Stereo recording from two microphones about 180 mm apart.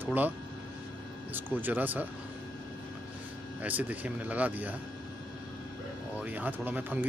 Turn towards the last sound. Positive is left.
turn(degrees=-10)  # may be behind; listen again after turning